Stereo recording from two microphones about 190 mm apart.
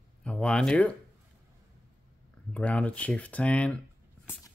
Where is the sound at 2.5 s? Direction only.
5° left (ahead or behind).